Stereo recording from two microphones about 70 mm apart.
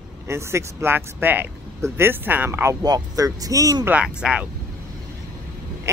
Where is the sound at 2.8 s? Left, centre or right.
Right.